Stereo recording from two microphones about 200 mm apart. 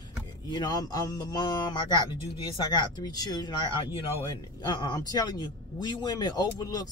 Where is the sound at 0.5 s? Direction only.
20° left (ahead or behind).